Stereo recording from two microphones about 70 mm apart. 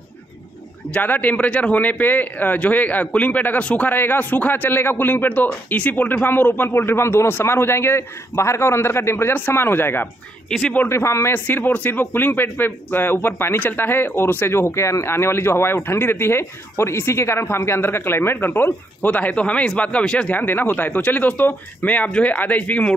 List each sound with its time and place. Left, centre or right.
0.9 s a man's voice: left
10.5 s speech: centre
10.9 s speech: left
11.3 s speech: left
19.0 s speech: centre
20.3 s a man's voice: left